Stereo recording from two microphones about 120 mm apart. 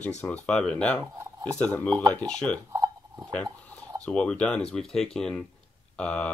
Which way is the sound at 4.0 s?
10° left (ahead or behind).